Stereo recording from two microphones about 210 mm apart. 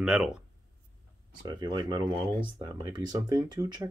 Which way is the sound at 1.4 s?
20° right (ahead or behind).